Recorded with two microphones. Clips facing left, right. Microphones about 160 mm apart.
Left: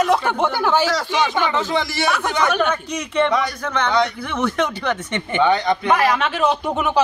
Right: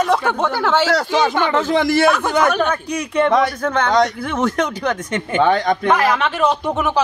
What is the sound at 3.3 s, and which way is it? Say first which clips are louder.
A man's voice: right 5 dB; 50° right (ahead or behind).